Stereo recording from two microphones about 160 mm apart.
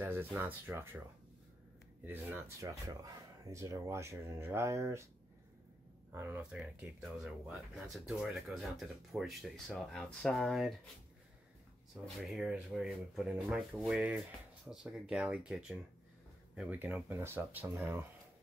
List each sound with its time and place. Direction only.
0.0 s speech: 15° right (ahead or behind)
2.0 s speech: 10° right (ahead or behind)
6.1 s speech: 10° right (ahead or behind)
11.9 s speech: 5° right (ahead or behind)